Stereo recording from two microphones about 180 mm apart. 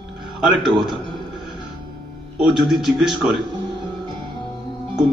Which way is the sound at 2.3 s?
Centre (ahead or behind).